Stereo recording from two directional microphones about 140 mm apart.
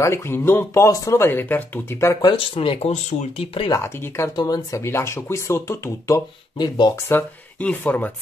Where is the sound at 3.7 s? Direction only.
15° left (ahead or behind).